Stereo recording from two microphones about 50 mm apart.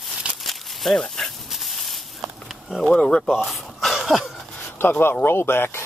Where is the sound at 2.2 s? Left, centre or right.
Centre.